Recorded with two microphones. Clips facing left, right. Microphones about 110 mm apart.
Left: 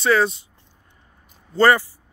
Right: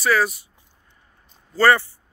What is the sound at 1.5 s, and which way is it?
Speech, 20° left (ahead or behind).